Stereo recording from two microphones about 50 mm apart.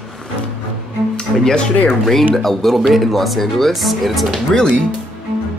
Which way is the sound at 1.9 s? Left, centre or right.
Centre.